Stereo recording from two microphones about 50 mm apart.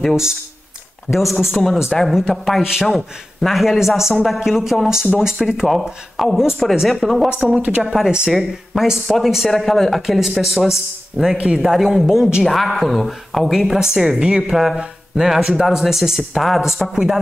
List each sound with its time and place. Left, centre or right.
0.1 s a woman's voice: centre
6.1 s a woman's voice: centre
7.5 s a woman's voice: right
7.8 s speech: centre
8.3 s a woman's voice: centre